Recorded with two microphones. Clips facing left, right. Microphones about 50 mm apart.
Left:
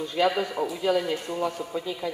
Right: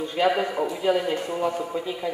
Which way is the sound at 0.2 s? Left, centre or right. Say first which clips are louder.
Right 2 dB; right.